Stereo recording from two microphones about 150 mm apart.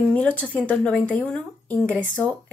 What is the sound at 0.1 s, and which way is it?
Speech, 10° left (ahead or behind).